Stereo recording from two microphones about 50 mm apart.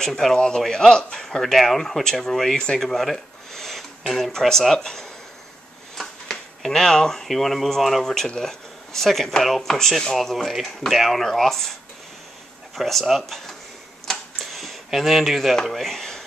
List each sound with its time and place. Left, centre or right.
0.0 s speech: centre
2.5 s speech: centre
2.8 s speech: centre
12.7 s speech: centre
14.0 s a sound: centre